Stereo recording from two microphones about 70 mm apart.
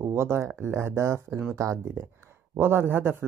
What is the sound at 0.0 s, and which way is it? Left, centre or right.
Speech, right.